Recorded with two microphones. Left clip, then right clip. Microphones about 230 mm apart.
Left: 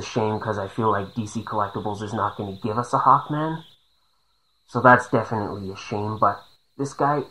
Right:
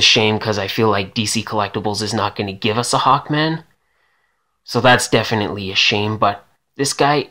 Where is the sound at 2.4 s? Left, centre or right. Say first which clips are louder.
Right 7 dB; right.